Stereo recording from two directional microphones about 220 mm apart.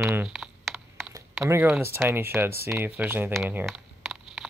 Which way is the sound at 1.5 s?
10° right (ahead or behind).